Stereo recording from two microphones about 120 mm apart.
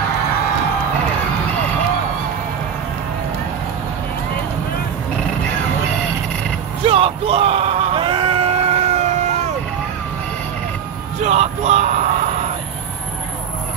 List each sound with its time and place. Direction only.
6.9 s a sound: 50° right (ahead or behind)
8.0 s crowd: 50° right (ahead or behind); by 9.5 s 75° right (ahead or behind)
11.2 s music: 65° right (ahead or behind)